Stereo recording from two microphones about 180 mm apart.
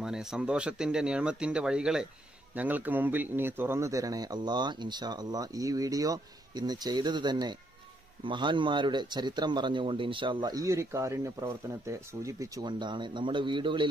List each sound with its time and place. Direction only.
0.0 s speech: 5° right (ahead or behind); by 13.8 s 25° right (ahead or behind)